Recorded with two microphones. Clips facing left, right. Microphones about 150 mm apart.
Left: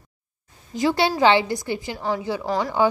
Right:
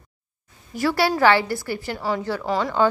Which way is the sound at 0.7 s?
20° left (ahead or behind).